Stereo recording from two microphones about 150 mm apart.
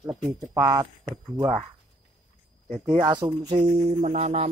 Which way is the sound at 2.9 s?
30° right (ahead or behind).